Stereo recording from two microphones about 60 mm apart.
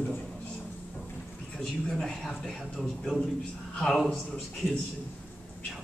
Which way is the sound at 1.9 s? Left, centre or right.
Centre.